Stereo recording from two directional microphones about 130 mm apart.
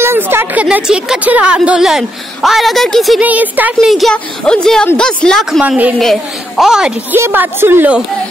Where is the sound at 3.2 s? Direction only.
15° right (ahead or behind).